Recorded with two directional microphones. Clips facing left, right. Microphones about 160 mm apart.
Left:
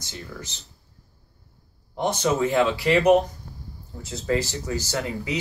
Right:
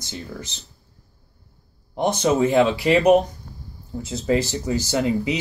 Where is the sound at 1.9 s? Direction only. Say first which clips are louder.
Right 4 dB; 15° right (ahead or behind).